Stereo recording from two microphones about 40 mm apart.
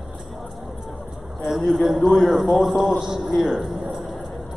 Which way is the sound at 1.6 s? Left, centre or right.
Centre.